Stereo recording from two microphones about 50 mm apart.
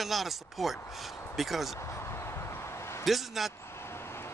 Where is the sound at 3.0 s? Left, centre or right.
Centre.